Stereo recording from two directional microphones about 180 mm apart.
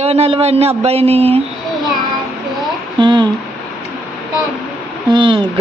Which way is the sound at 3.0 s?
25° right (ahead or behind).